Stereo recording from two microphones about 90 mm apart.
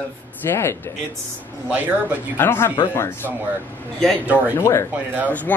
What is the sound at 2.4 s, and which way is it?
Speech, 25° left (ahead or behind).